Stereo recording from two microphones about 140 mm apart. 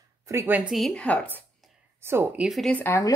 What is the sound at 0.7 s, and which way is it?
Speech, centre (ahead or behind).